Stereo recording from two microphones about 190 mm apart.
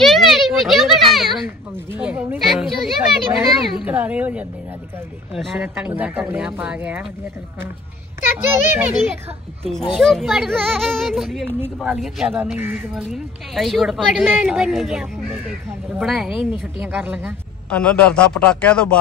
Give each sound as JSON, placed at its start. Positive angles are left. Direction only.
{"t": 0.0, "sound": "a sound", "side_deg": 0}
{"t": 1.9, "sound": "a child's voice", "side_deg": -5}
{"t": 8.7, "sound": "speech", "side_deg": -10}
{"t": 9.9, "sound": "speech", "side_deg": 0}
{"t": 17.6, "sound": "speech", "side_deg": 5}